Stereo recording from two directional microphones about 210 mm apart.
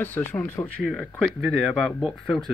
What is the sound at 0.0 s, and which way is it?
Speech, 10° left (ahead or behind).